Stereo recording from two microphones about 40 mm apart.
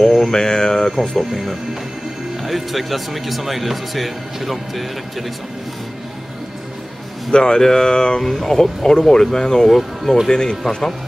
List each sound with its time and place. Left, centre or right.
0.2 s speech: centre
7.2 s speech: centre
8.2 s speech: centre
9.7 s speech: centre
10.2 s speech: centre